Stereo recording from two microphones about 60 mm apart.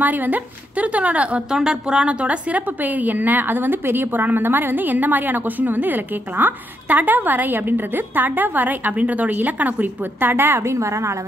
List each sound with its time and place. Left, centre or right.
0.0 s a woman's voice: right
1.5 s a woman's voice: centre; by 11.1 s right